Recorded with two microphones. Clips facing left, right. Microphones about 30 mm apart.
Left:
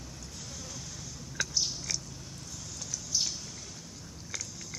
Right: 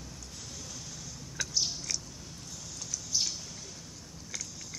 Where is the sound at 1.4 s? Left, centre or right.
Centre.